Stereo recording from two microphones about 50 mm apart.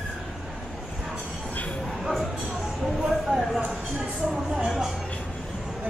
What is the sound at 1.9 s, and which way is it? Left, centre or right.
Bow-wow, centre.